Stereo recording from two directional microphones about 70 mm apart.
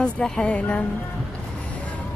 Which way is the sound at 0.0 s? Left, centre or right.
Centre.